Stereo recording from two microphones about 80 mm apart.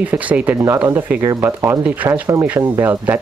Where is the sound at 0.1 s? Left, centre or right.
Right.